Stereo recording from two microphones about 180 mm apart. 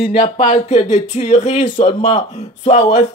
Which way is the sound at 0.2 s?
40° left (ahead or behind).